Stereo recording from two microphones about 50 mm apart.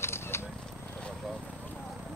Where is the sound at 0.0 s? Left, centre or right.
Left.